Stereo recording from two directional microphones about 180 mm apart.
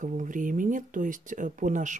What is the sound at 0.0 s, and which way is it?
Speech, 45° right (ahead or behind).